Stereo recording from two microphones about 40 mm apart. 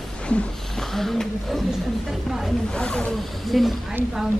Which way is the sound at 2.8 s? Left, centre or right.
Left.